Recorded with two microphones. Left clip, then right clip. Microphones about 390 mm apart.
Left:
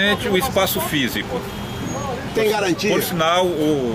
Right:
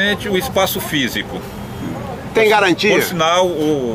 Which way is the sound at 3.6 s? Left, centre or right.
Centre.